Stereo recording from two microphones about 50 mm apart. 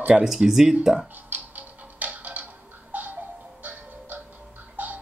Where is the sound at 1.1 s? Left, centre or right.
Right.